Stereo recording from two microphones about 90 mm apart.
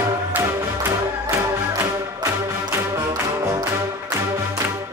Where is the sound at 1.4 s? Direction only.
35° right (ahead or behind).